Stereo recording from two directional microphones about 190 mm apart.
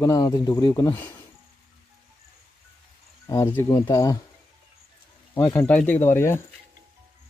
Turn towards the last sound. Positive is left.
turn(degrees=10)  # may be behind; listen again after turning